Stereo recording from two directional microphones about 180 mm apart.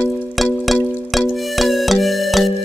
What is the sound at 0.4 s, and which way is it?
Music, centre (ahead or behind).